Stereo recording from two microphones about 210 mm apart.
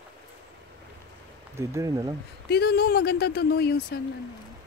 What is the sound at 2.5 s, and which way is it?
Speech, 50° left (ahead or behind).